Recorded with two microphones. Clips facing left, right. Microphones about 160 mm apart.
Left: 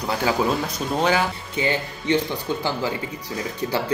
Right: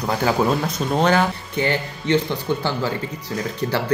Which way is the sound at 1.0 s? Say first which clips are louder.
Right 3 dB; 15° left (ahead or behind).